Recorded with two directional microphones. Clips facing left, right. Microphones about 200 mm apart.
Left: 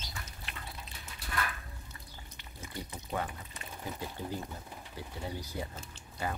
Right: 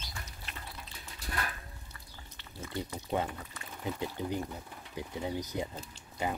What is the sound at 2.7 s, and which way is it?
Speech, 20° right (ahead or behind).